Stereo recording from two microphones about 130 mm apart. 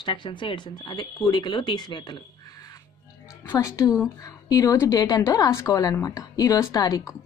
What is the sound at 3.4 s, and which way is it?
A woman's voice, 25° left (ahead or behind).